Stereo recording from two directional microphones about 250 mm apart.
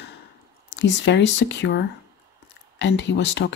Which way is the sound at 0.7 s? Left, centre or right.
Left.